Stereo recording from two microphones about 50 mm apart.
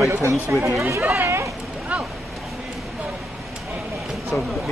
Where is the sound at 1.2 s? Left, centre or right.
Right.